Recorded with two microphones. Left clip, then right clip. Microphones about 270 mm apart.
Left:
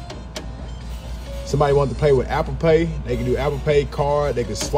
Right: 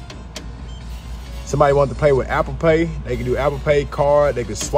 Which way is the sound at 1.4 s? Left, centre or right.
Centre.